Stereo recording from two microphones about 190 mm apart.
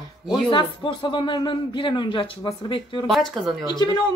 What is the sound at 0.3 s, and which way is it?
A man's voice, 25° left (ahead or behind).